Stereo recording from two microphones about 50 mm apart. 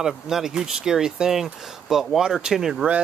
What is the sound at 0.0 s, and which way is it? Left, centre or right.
Speech, centre.